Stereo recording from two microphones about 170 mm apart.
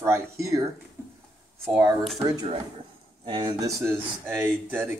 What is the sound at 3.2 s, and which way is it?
Speech, 25° right (ahead or behind).